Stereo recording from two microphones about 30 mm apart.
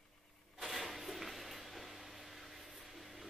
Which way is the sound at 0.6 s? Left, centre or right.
Centre.